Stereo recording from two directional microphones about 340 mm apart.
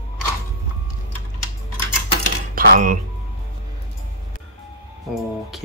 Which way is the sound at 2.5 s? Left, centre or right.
Right.